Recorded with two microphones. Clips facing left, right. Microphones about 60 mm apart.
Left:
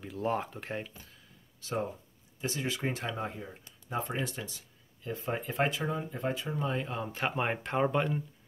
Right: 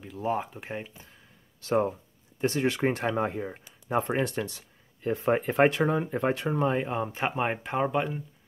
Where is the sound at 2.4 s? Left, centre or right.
Right.